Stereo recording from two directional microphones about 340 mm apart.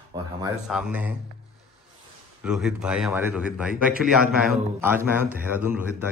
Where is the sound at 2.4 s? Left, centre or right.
Centre.